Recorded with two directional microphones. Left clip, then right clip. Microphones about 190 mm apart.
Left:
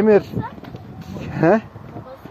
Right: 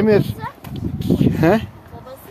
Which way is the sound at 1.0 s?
15° right (ahead or behind).